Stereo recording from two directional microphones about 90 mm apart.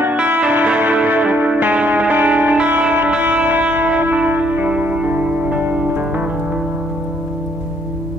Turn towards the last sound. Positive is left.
turn(degrees=-20)  # may be behind; listen again after turning